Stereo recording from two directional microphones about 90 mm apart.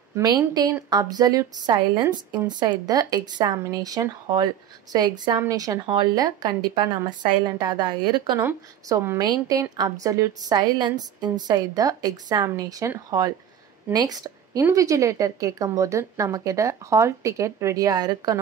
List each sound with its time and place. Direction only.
0.1 s a woman's voice: 45° right (ahead or behind)
5.5 s a woman's voice: 40° right (ahead or behind)
5.9 s a woman's voice: 50° right (ahead or behind)
9.6 s a woman's voice: 40° right (ahead or behind)
13.9 s a woman's voice: 45° right (ahead or behind)